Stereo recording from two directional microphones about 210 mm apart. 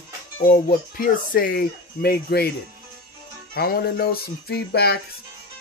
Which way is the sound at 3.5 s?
45° left (ahead or behind).